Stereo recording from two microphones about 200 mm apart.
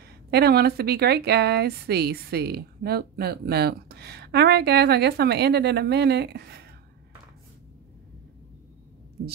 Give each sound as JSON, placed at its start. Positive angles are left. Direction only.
{"t": 0.3, "sound": "a woman's voice", "side_deg": -55}